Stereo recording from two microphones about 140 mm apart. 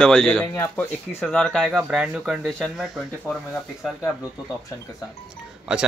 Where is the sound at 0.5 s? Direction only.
15° left (ahead or behind).